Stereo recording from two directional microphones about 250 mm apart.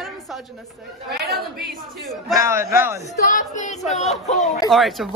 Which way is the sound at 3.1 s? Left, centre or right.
Left.